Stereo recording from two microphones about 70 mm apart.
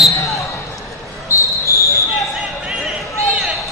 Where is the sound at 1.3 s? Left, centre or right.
Left.